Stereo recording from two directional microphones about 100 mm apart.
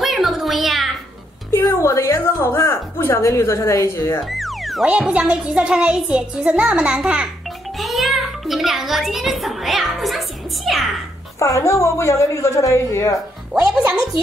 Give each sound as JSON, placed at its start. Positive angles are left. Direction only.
{"t": 0.0, "sound": "a sound", "side_deg": 0}
{"t": 1.7, "sound": "a woman's voice", "side_deg": 30}
{"t": 4.3, "sound": "music", "side_deg": 0}
{"t": 4.8, "sound": "music", "side_deg": -10}
{"t": 7.8, "sound": "music", "side_deg": 0}
{"t": 11.3, "sound": "a woman's voice", "side_deg": 30}